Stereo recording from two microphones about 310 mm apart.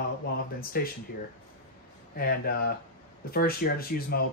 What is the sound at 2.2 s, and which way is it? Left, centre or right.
Speech, left.